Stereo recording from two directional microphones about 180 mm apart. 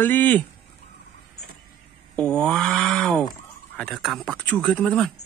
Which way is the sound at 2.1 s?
5° left (ahead or behind).